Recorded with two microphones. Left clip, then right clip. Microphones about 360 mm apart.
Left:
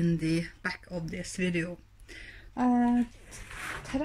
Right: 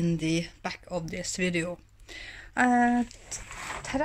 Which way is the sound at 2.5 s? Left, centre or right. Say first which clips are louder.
Right 5 dB; right.